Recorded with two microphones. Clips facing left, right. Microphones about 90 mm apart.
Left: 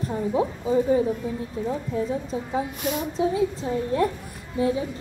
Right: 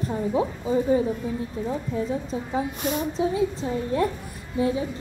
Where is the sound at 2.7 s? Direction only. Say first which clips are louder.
Right 1 dB; 30° right (ahead or behind).